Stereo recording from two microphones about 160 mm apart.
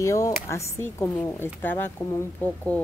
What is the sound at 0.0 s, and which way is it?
A woman's voice, 20° left (ahead or behind).